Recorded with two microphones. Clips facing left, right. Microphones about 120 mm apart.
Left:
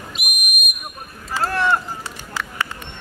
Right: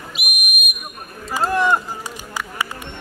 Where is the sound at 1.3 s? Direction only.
15° right (ahead or behind).